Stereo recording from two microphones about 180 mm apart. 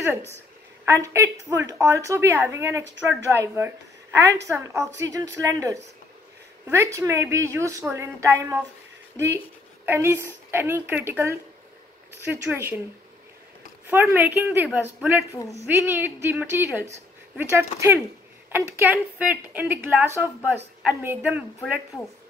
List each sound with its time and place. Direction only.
0.8 s a woman's voice: 15° right (ahead or behind)
9.8 s a woman's voice: 15° right (ahead or behind)
13.8 s a woman's voice: 10° right (ahead or behind)